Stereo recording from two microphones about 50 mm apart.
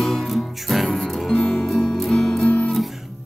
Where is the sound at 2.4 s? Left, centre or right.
Left.